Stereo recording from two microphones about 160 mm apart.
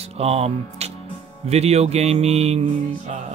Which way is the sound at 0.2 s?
40° right (ahead or behind).